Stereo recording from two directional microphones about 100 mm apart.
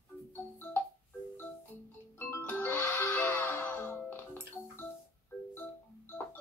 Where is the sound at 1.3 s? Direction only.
20° left (ahead or behind).